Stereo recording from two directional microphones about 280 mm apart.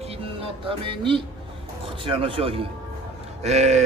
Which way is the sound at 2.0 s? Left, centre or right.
Centre.